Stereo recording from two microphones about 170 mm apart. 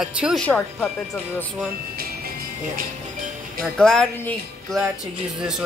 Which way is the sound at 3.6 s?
5° left (ahead or behind).